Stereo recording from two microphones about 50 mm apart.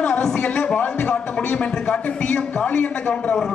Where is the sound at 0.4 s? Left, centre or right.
Left.